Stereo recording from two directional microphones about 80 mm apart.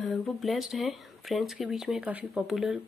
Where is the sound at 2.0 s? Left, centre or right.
Centre.